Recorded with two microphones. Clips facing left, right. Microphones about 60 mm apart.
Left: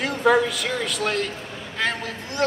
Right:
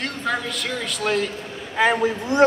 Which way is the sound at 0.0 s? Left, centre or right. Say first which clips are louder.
Left 7 dB; centre.